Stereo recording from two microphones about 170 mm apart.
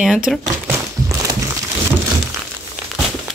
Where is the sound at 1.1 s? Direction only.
20° right (ahead or behind).